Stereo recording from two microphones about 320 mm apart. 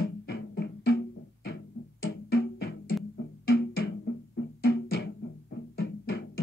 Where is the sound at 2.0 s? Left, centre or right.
Left.